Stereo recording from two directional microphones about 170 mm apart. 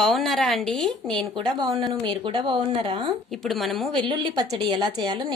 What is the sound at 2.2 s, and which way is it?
Speech, 30° right (ahead or behind).